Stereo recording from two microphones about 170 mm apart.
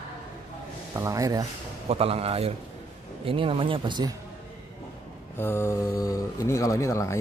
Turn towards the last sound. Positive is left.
turn(degrees=15)  # may be behind; listen again after turning